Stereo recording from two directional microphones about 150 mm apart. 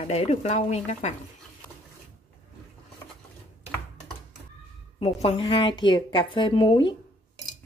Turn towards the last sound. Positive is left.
turn(degrees=30)  # may be behind; listen again after turning